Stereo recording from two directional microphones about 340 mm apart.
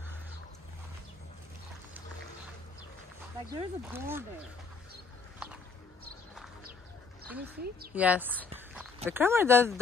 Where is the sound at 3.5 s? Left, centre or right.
Centre.